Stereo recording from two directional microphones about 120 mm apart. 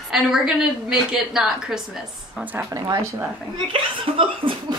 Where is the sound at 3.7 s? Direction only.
45° right (ahead or behind).